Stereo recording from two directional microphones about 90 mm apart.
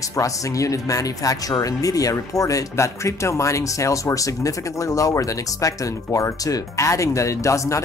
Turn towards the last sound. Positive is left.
turn(degrees=35)  # may be behind; listen again after turning